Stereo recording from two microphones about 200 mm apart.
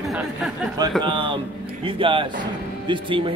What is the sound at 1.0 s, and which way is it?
Speech, 25° right (ahead or behind).